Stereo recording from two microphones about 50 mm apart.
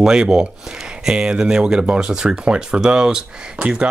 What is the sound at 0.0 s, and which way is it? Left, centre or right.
Speech, centre.